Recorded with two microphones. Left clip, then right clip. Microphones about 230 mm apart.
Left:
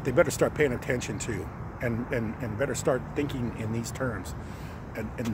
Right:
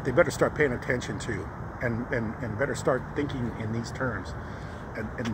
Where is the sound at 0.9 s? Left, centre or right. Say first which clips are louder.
Right 1 dB; centre.